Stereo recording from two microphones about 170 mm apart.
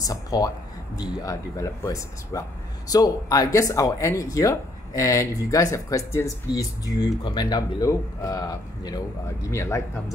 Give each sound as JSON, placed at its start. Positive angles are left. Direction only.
{"t": 0.0, "sound": "speech", "side_deg": 20}